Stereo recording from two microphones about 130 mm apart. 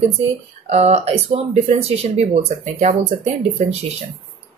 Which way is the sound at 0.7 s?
55° right (ahead or behind).